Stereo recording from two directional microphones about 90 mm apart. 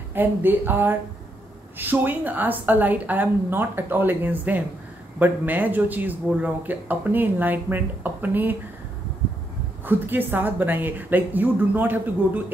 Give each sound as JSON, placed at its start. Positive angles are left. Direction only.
{"t": 0.1, "sound": "speech", "side_deg": -20}
{"t": 9.8, "sound": "speech", "side_deg": -20}